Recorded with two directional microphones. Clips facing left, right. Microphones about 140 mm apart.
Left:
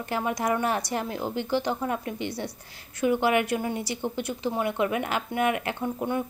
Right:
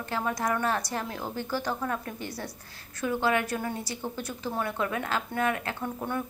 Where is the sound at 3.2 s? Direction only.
20° left (ahead or behind).